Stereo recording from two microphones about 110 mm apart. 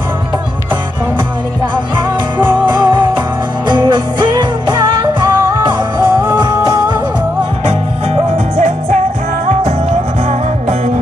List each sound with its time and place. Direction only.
2.3 s music: 40° right (ahead or behind)
8.1 s music: 90° right